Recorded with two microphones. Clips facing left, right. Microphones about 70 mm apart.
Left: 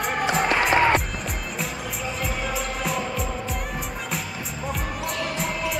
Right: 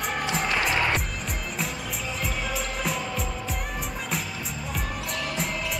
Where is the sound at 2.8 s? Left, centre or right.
Centre.